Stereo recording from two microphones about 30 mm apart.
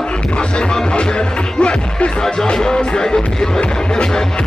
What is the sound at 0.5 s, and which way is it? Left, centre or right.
Music, left.